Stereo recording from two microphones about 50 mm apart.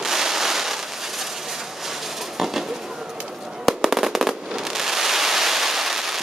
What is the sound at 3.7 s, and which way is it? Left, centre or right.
Fireworks, centre.